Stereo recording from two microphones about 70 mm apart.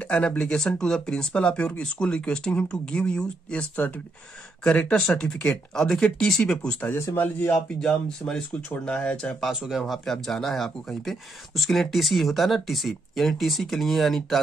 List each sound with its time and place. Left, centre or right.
0.1 s speech: centre
7.2 s speech: left
7.8 s speech: centre
9.4 s speech: centre